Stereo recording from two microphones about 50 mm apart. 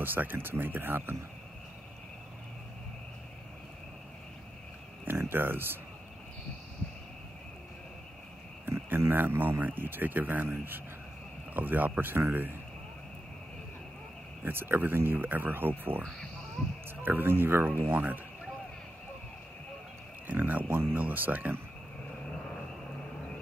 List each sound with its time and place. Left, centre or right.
0.0 s speech: right
5.0 s speech: right
8.6 s a sound: right
9.1 s speech: right
14.4 s speech: right
17.0 s speech: right
20.2 s speech: right
20.6 s speech: right
20.9 s speech: right